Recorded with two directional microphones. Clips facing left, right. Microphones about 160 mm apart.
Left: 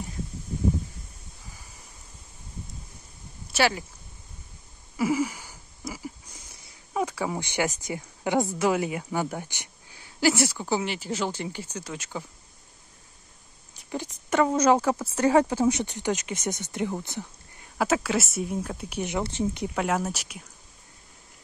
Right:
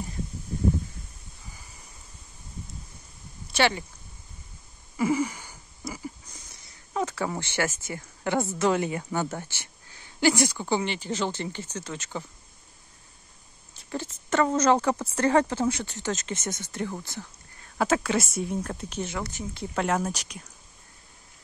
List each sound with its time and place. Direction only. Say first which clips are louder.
3.5 s speech: even; 5° left (ahead or behind)
4.9 s a sound: even; 5° left (ahead or behind)
6.9 s speech: left 1 dB; 10° left (ahead or behind)
13.7 s speech: even; 15° left (ahead or behind)
17.7 s speech: even; 5° left (ahead or behind); by 19.7 s 25° left (ahead or behind)
19.7 s speech: even; 5° left (ahead or behind)